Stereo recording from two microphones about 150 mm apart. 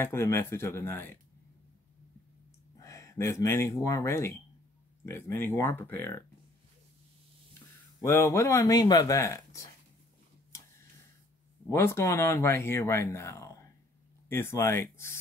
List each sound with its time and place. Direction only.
0.0 s speech: 15° left (ahead or behind)
2.8 s speech: 20° left (ahead or behind)
8.0 s speech: 20° left (ahead or behind)
11.7 s speech: 20° left (ahead or behind)